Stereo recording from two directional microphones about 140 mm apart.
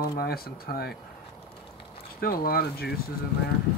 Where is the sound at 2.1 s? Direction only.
90° left.